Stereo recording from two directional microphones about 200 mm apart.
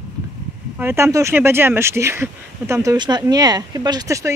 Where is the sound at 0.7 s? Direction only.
10° right (ahead or behind).